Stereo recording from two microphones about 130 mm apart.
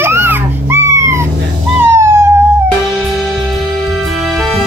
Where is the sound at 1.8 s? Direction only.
20° right (ahead or behind).